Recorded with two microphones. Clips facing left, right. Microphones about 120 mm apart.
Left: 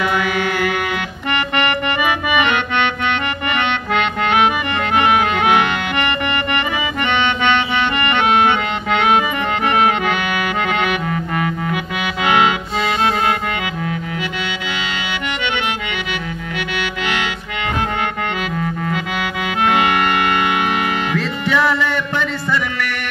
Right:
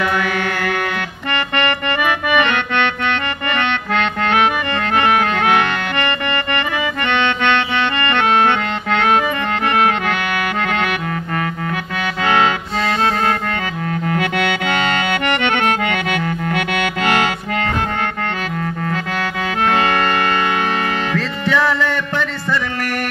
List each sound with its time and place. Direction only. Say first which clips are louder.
0.0 s music: even; 20° left (ahead or behind)
7.7 s accordion: even; 15° left (ahead or behind)
13.8 s accordion: right 4 dB; 55° right (ahead or behind)
19.6 s music: even; 15° left (ahead or behind)